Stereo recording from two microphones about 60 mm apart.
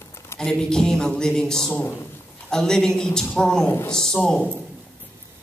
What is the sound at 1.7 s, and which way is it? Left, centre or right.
Speech, left.